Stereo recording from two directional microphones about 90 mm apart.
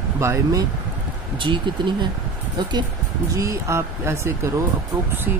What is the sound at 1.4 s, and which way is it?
Speech, 65° right (ahead or behind).